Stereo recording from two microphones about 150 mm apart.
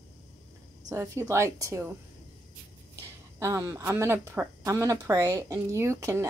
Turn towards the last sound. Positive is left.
turn(degrees=-20)  # may be behind; listen again after turning